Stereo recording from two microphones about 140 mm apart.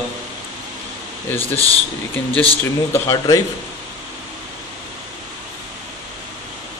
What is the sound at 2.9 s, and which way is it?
Speech, 25° left (ahead or behind).